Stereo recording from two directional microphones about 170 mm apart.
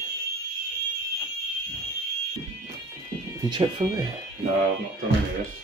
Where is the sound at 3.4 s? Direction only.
25° right (ahead or behind).